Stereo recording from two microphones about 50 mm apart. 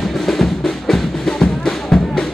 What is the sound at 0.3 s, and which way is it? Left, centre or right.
Music, centre.